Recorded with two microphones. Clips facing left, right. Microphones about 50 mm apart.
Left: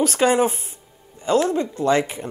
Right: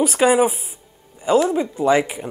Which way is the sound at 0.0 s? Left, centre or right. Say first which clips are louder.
Right 2 dB; centre.